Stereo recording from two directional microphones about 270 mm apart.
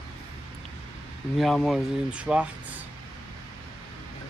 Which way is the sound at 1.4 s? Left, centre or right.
Centre.